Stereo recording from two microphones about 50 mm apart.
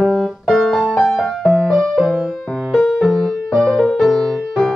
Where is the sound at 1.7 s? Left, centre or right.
Centre.